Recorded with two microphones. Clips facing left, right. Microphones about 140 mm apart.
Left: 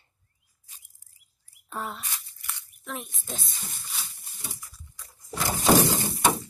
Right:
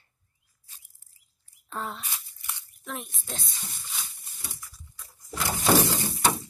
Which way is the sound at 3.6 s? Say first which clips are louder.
Even; centre (ahead or behind).